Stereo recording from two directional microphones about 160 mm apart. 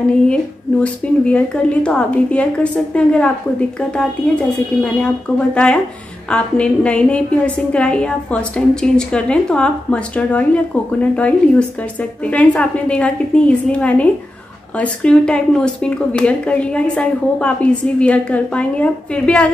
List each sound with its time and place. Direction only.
0.3 s a woman's voice: 10° left (ahead or behind)
5.0 s a woman's voice: 5° left (ahead or behind)